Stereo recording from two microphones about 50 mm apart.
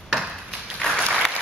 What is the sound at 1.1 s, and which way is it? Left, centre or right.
Applause, left.